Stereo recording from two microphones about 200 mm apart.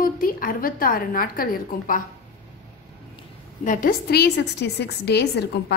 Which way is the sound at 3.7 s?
45° left (ahead or behind).